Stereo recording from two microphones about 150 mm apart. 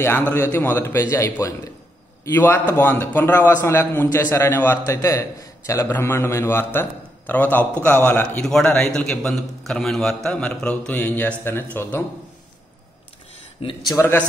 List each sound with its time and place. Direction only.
0.0 s a man's voice: 15° left (ahead or behind)
8.5 s a man's voice: 5° left (ahead or behind)
13.8 s a man's voice: 25° left (ahead or behind)